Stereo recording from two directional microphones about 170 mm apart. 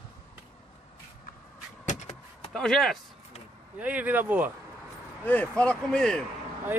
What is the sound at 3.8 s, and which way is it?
Speech, 10° right (ahead or behind).